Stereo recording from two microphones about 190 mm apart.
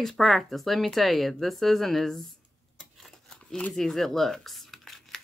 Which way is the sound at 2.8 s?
Centre (ahead or behind).